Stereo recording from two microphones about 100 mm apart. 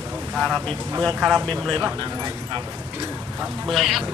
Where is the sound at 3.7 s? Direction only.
Centre (ahead or behind).